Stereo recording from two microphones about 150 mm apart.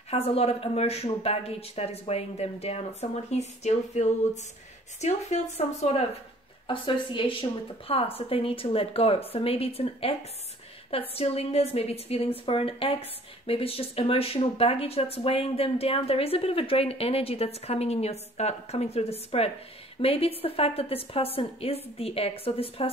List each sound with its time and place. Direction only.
0.1 s speech: 40° left (ahead or behind)